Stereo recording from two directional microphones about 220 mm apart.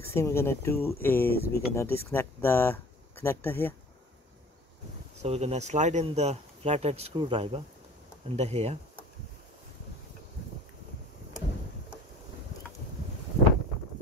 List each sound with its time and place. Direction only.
0.0 s speech: 10° left (ahead or behind)
5.2 s speech: 30° right (ahead or behind)